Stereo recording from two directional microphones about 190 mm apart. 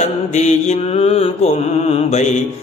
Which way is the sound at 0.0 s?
40° left (ahead or behind).